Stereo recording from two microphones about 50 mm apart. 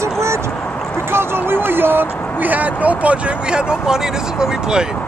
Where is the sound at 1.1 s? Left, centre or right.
Right; by 4.8 s centre.